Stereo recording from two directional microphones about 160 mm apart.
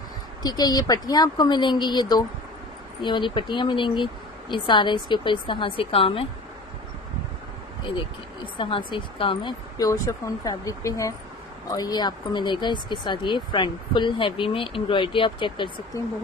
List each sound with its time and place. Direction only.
0.4 s a woman's voice: 25° left (ahead or behind)
8.5 s speech: 30° left (ahead or behind)